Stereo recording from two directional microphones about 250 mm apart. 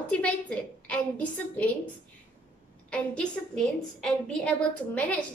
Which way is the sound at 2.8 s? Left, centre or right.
Centre.